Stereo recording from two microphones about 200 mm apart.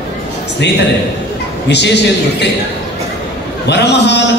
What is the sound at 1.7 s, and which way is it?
Speech, 60° left (ahead or behind).